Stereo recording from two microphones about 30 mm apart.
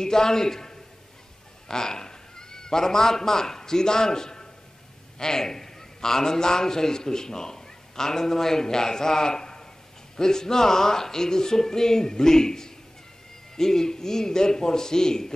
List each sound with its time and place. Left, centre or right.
0.0 s a man's voice: centre